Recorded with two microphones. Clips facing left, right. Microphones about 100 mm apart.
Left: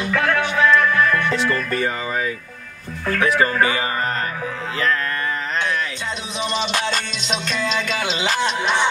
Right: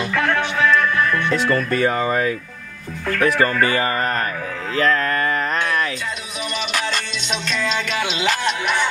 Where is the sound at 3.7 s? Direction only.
55° right (ahead or behind).